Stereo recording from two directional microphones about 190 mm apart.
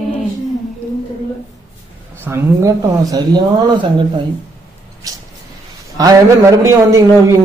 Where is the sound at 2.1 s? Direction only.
15° right (ahead or behind).